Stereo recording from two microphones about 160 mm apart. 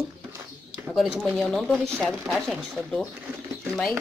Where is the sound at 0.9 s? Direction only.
5° left (ahead or behind).